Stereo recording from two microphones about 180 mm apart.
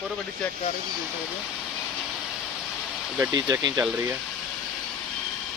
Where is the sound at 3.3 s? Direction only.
25° right (ahead or behind).